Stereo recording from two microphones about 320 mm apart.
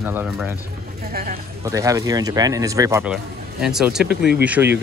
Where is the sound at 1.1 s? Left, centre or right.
Right.